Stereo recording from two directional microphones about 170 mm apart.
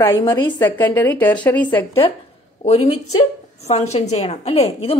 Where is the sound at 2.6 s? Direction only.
35° left (ahead or behind).